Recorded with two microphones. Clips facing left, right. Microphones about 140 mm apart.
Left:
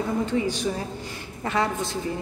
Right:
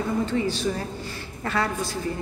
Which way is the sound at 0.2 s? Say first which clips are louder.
Even; 15° left (ahead or behind).